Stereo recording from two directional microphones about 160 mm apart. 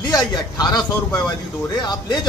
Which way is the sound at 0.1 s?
25° left (ahead or behind).